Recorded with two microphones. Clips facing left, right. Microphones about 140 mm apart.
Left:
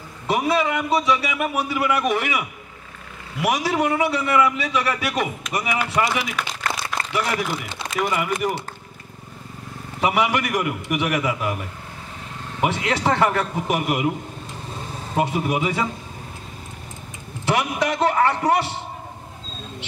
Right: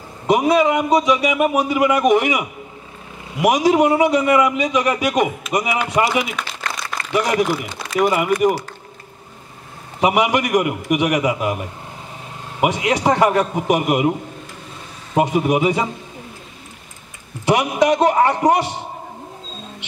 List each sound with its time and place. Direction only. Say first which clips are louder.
0.3 s a man's voice: right 6 dB; 15° right (ahead or behind)
7.5 s speech: right 4 dB; 25° left (ahead or behind)
8.0 s a man's voice: right 6 dB; 25° right (ahead or behind)
9.9 s a man's voice: right 4 dB; 20° right (ahead or behind)
15.1 s a man's voice: right 5 dB; 20° right (ahead or behind)
17.5 s speech: right 6 dB; 15° right (ahead or behind)